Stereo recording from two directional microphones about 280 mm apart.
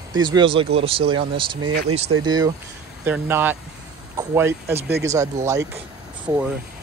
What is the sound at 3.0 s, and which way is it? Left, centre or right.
Speech, centre.